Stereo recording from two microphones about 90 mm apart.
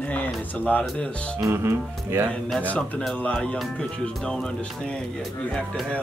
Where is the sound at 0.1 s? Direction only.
15° left (ahead or behind).